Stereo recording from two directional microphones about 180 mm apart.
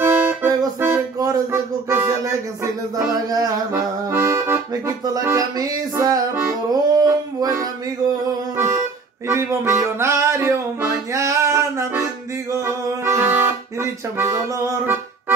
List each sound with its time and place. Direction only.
0.0 s music: 10° right (ahead or behind)